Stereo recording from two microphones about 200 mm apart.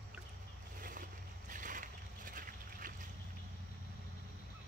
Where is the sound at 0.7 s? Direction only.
40° right (ahead or behind).